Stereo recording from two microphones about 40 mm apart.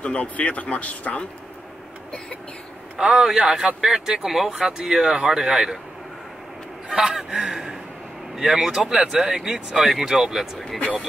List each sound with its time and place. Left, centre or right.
0.0 s speech: left
3.0 s speech: centre
6.9 s speech: centre
9.8 s speech: centre